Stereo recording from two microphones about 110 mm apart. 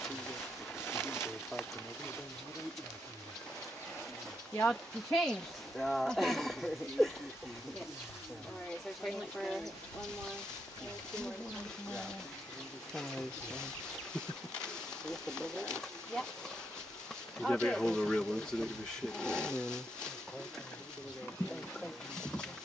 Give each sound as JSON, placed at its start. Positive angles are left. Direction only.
{"t": 0.7, "sound": "pigeon", "side_deg": 20}
{"t": 5.1, "sound": "speech", "side_deg": 5}
{"t": 9.0, "sound": "speech", "side_deg": 0}
{"t": 12.9, "sound": "speech", "side_deg": 5}
{"t": 15.0, "sound": "speech", "side_deg": 5}
{"t": 17.4, "sound": "speech", "side_deg": 5}
{"t": 19.1, "sound": "a sound", "side_deg": 5}
{"t": 21.7, "sound": "speech", "side_deg": 5}